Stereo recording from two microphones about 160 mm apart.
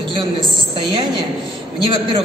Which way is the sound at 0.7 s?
30° right (ahead or behind).